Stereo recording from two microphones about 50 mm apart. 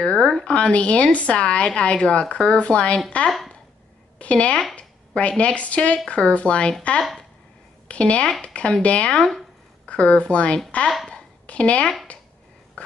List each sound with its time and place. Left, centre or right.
0.0 s speech: centre
3.3 s speech: centre
4.2 s speech: left
4.7 s a sound: left
5.4 s speech: left
7.9 s a woman's voice: left
11.1 s a sound: left